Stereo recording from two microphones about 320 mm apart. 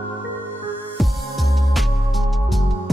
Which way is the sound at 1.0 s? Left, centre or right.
Centre.